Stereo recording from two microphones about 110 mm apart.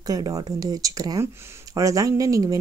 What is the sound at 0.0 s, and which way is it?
Speech, 35° right (ahead or behind).